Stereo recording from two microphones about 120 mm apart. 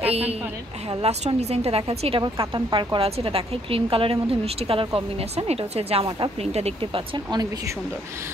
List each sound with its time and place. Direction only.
0.0 s a woman's voice: 55° right (ahead or behind)
2.2 s a woman's voice: 40° right (ahead or behind)